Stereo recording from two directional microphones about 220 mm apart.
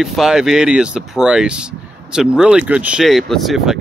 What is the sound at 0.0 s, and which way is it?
Speech, centre (ahead or behind).